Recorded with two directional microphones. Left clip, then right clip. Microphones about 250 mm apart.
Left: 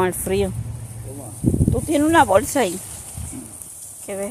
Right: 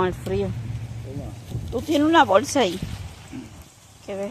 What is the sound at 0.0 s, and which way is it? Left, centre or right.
Speech, left.